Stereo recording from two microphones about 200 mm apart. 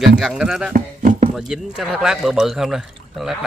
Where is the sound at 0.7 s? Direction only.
40° right (ahead or behind).